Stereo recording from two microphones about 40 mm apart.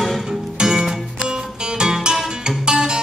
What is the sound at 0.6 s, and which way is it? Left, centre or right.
Music, centre.